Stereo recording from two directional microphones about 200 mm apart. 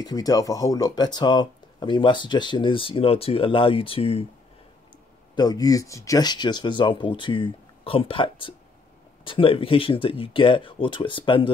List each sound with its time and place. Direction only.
0.0 s speech: 20° left (ahead or behind)
5.3 s speech: 20° left (ahead or behind)